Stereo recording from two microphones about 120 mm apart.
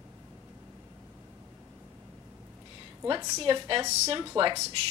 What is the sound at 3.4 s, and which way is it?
Speech, 45° right (ahead or behind).